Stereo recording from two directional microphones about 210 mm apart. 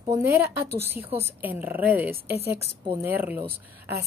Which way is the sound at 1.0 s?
30° right (ahead or behind).